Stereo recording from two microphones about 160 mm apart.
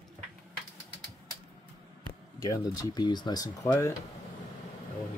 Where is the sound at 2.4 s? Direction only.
20° left (ahead or behind).